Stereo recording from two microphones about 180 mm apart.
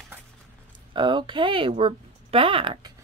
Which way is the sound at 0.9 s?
25° right (ahead or behind).